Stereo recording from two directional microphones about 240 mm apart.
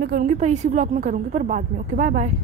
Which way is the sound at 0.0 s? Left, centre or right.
Right.